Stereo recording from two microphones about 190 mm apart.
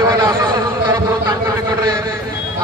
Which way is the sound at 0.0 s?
20° right (ahead or behind).